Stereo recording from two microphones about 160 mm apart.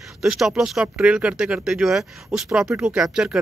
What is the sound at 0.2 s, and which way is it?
Speech, centre (ahead or behind).